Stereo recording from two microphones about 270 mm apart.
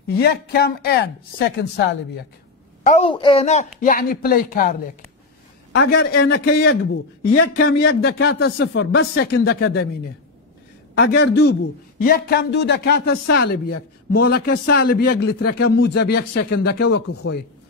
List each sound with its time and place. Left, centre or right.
0.1 s a man's voice: left
2.8 s a man's voice: left
11.0 s a man's voice: left
14.1 s a man's voice: left